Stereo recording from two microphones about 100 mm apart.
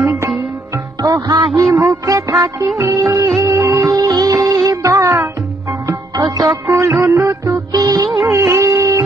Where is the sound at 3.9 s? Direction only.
40° right (ahead or behind).